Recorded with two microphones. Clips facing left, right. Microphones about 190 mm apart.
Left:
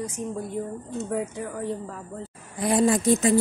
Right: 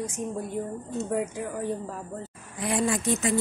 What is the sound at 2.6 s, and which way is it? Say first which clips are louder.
Speech: left 5 dB; 35° left (ahead or behind).